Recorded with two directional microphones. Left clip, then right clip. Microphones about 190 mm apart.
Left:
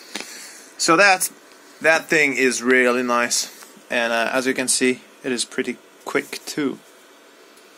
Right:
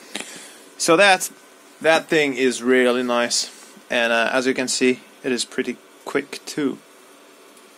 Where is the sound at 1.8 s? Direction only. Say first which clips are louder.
Left 1 dB; 5° right (ahead or behind).